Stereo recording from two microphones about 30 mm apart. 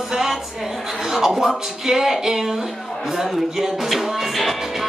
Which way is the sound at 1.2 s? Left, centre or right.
Centre.